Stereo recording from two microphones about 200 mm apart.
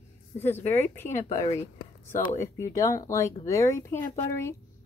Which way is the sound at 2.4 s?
15° left (ahead or behind).